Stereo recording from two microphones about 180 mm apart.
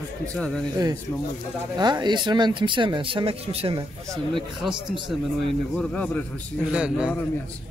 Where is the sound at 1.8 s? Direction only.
25° right (ahead or behind).